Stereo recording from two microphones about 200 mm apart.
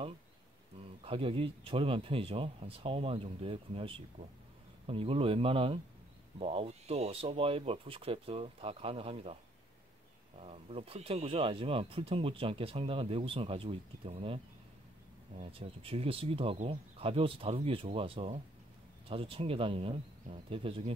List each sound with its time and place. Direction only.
1.0 s speech: 25° right (ahead or behind)
10.4 s speech: 30° right (ahead or behind)